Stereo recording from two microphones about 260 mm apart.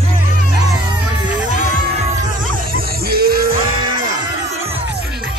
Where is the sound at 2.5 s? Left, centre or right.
Right.